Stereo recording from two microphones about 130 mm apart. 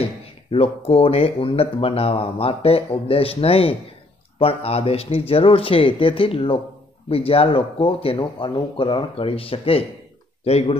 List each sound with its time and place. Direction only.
0.0 s speech: 45° left (ahead or behind)